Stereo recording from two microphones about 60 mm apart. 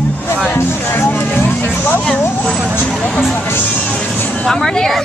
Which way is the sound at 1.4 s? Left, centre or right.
Left.